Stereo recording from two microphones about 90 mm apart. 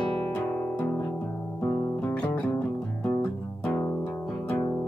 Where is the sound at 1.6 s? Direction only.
30° left (ahead or behind).